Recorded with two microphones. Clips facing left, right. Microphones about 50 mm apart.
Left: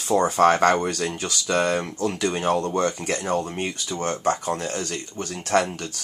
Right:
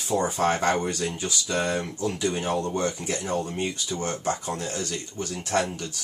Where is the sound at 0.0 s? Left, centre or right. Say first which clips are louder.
Left 6 dB; left.